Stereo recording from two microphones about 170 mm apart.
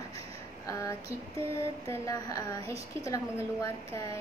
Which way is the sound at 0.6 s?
20° left (ahead or behind).